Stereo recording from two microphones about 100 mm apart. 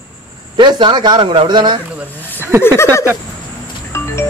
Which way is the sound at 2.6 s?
25° left (ahead or behind).